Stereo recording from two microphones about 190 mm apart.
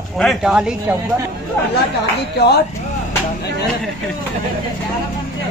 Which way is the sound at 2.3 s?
60° left (ahead or behind).